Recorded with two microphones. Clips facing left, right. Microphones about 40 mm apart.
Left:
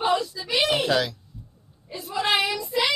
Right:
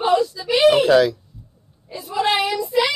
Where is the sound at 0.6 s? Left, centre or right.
Centre.